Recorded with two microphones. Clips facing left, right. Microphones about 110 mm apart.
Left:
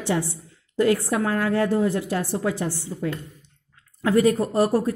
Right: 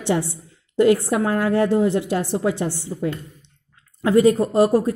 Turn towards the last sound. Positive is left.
turn(degrees=-20)  # may be behind; listen again after turning